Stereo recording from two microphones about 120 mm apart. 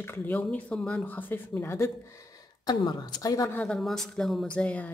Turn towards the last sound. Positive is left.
turn(degrees=10)  # may be behind; listen again after turning